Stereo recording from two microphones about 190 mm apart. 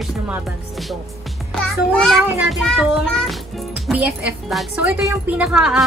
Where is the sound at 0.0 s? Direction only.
Centre (ahead or behind).